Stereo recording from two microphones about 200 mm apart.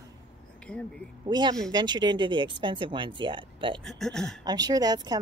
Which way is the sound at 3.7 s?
5° left (ahead or behind).